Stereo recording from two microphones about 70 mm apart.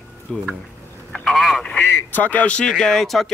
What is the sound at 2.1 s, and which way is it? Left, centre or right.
Speech, left.